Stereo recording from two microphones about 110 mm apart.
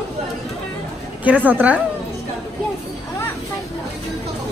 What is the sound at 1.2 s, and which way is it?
Speech, 15° right (ahead or behind).